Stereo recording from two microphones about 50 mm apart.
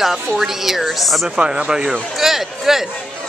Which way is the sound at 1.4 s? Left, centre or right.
Centre.